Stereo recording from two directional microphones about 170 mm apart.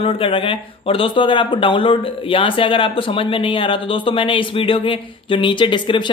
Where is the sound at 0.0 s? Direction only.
30° left (ahead or behind).